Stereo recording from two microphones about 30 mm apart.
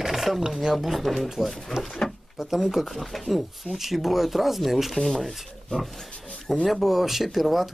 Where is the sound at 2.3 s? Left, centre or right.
Centre.